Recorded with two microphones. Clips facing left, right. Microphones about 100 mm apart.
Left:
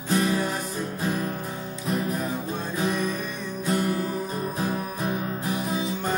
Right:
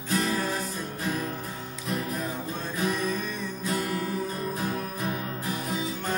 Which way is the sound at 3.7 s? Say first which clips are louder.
Left 5 dB; 25° left (ahead or behind).